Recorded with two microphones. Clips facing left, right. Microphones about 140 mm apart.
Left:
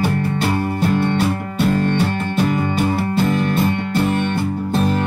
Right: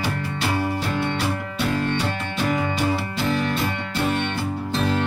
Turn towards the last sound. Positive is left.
turn(degrees=50)  # may be behind; listen again after turning